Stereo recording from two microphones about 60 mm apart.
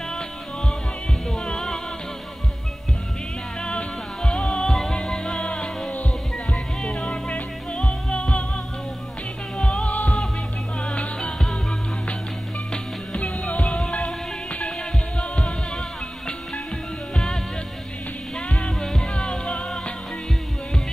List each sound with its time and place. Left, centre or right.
1.2 s music: centre
3.6 s music: centre
9.6 s music: centre
9.8 s music: left
13.2 s music: left
17.1 s music: centre
18.6 s music: centre